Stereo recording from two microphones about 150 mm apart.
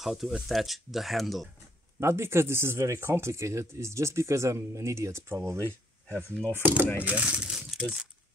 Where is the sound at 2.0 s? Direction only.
15° right (ahead or behind).